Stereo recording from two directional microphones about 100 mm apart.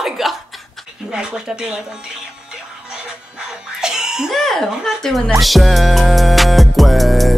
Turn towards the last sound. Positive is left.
turn(degrees=0)  # may be behind; listen again after turning